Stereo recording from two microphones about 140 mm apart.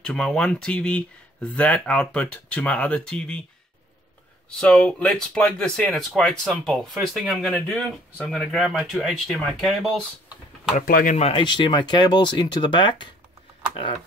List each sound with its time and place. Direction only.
0.0 s speech: 5° left (ahead or behind)
4.5 s speech: 5° left (ahead or behind)
10.9 s speech: 90° left
11.1 s speech: 45° left (ahead or behind)
11.4 s speech: 35° left (ahead or behind)